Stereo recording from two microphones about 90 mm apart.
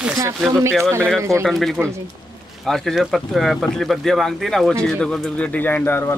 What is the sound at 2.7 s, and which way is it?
Speech, centre (ahead or behind).